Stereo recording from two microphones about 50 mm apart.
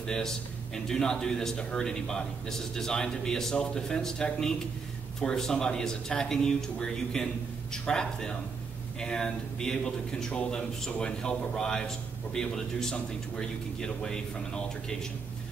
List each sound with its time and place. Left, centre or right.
0.0 s a man's voice: centre